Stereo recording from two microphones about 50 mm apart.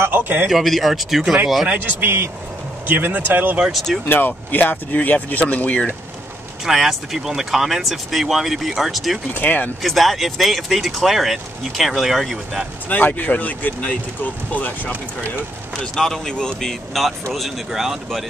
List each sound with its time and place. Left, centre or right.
0.0 s a sound: right
0.5 s speech: centre
1.7 s speech: right
3.7 s speech: centre
4.5 s speech: left
6.6 s speech: centre
9.3 s speech: left
9.8 s speech: centre
12.8 s speech: left
15.8 s speech: centre
16.6 s speech: centre